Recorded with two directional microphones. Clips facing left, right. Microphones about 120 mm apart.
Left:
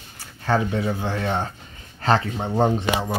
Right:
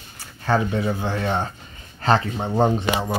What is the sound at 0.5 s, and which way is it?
Speech, 5° right (ahead or behind).